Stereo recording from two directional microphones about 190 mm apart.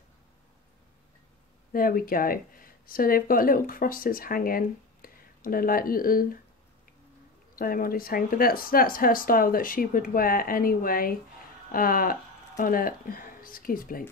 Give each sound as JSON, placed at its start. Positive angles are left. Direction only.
{"t": 1.7, "sound": "speech", "side_deg": 50}
{"t": 7.5, "sound": "speech", "side_deg": 50}